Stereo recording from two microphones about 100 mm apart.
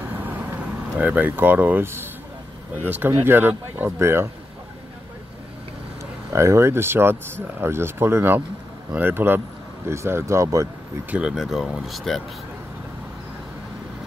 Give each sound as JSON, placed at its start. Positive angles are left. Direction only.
{"t": 0.0, "sound": "vehicle", "side_deg": -20}
{"t": 2.8, "sound": "speech", "side_deg": -20}
{"t": 6.3, "sound": "speech", "side_deg": -30}
{"t": 11.1, "sound": "speech", "side_deg": -10}